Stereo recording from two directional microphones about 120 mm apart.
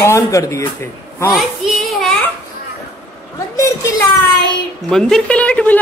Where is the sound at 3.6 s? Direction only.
25° left (ahead or behind).